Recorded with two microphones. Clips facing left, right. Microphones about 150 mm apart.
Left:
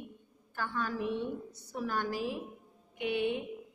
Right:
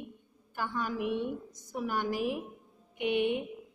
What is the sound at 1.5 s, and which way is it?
Speech, 70° left (ahead or behind).